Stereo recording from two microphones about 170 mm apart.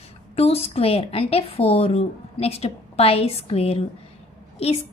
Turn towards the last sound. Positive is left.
turn(degrees=35)  # may be behind; listen again after turning